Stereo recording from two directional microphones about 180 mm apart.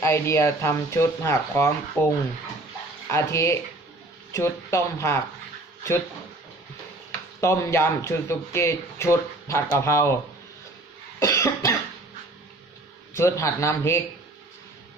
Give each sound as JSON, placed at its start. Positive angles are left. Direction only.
{"t": 0.0, "sound": "speech", "side_deg": 15}
{"t": 7.3, "sound": "speech", "side_deg": 15}
{"t": 11.1, "sound": "cough", "side_deg": 15}
{"t": 13.1, "sound": "speech", "side_deg": 15}